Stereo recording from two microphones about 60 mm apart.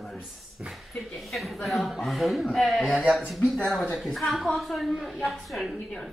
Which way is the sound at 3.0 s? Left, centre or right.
Centre.